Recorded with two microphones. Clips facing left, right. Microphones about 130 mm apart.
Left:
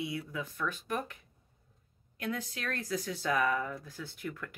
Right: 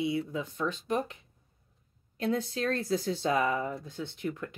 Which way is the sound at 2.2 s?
30° right (ahead or behind).